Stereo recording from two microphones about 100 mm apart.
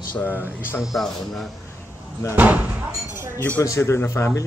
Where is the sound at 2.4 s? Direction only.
15° right (ahead or behind).